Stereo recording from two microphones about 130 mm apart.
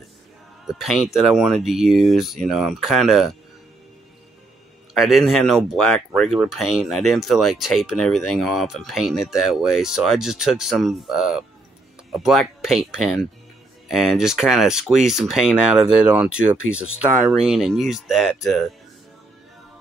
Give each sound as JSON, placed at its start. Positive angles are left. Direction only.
{"t": 0.7, "sound": "speech", "side_deg": -5}
{"t": 4.9, "sound": "speech", "side_deg": 0}